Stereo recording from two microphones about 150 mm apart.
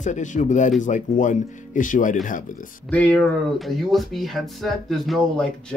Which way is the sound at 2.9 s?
10° left (ahead or behind).